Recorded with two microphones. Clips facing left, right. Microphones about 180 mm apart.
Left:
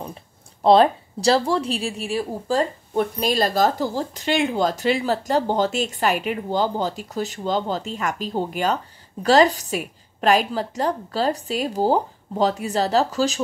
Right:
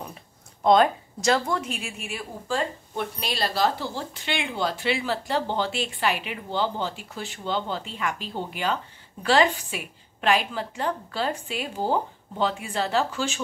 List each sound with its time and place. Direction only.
0.7 s a woman's voice: 30° left (ahead or behind)